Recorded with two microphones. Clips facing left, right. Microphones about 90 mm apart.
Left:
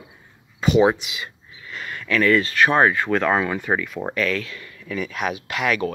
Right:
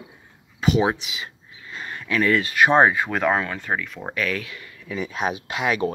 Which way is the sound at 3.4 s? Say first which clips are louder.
Left 4 dB; 10° left (ahead or behind).